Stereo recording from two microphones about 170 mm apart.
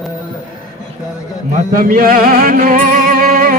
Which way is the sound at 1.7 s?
55° right (ahead or behind).